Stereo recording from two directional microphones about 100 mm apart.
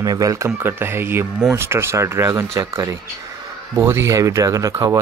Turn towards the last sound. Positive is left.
turn(degrees=-30)  # may be behind; listen again after turning